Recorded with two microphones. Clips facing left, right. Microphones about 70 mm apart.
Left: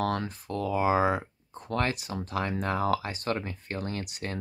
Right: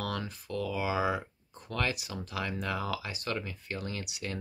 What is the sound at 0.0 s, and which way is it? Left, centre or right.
Speech, left.